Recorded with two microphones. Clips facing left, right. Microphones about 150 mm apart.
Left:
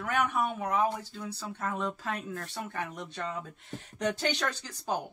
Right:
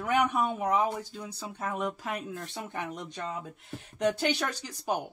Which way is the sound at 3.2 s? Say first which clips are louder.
Left 2 dB; 5° right (ahead or behind).